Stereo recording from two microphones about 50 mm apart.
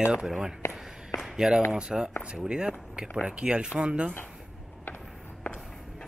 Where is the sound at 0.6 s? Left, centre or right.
Left.